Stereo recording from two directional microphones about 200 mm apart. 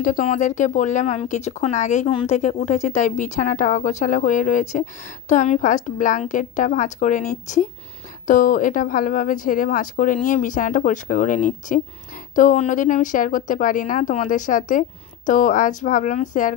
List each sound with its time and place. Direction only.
0.0 s a woman's voice: 40° left (ahead or behind)